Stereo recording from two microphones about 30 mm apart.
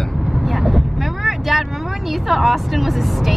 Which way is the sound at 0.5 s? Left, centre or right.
Centre.